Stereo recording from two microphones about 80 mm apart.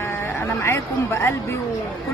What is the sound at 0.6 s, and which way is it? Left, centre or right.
Speech, left.